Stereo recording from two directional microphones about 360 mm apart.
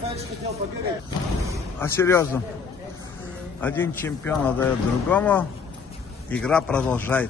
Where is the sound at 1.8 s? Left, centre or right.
Centre.